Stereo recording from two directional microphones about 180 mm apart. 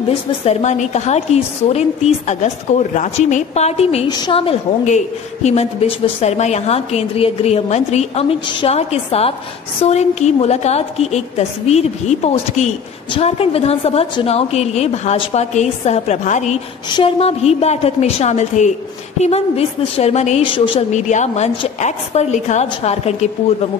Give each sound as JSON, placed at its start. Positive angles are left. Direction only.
{"t": 0.5, "sound": "a woman's voice", "side_deg": 40}
{"t": 20.9, "sound": "a woman's voice", "side_deg": 40}